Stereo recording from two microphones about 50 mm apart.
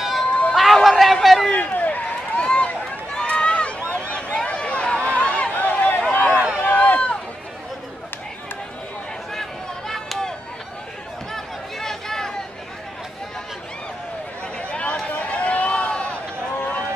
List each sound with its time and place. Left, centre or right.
0.0 s run: centre
0.3 s run: left
0.6 s a sound: centre
1.5 s run: left
4.1 s a sound: left
5.1 s run: left
9.3 s chop: centre
11.3 s chatter: centre
14.7 s run: left
16.5 s run: left